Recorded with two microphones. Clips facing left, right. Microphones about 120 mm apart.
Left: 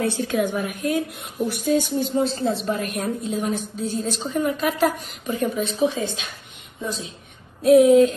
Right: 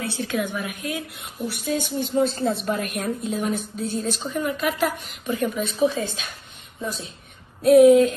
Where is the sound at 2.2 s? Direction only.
45° right (ahead or behind).